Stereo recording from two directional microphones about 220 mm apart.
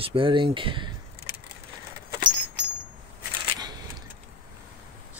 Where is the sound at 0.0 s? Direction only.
25° right (ahead or behind).